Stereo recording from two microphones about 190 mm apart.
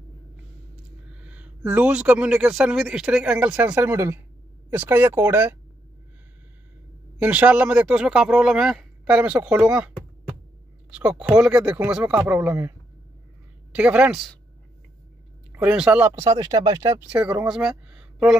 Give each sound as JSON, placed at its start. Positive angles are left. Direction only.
{"t": 1.1, "sound": "speech", "side_deg": -5}
{"t": 7.2, "sound": "speech", "side_deg": -10}
{"t": 10.9, "sound": "speech", "side_deg": -5}
{"t": 15.5, "sound": "speech", "side_deg": -10}
{"t": 17.1, "sound": "speech", "side_deg": -5}